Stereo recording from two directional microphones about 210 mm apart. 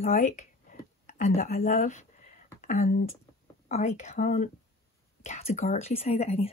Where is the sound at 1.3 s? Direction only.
40° left (ahead or behind).